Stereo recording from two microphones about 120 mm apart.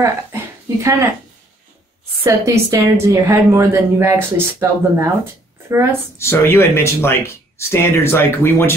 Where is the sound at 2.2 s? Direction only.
25° right (ahead or behind).